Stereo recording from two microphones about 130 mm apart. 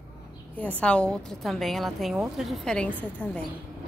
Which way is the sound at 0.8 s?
10° left (ahead or behind).